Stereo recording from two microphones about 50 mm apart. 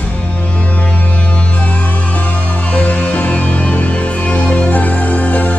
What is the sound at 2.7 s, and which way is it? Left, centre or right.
Music, left.